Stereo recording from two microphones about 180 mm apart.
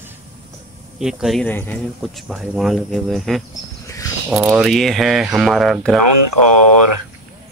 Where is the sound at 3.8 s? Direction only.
15° left (ahead or behind).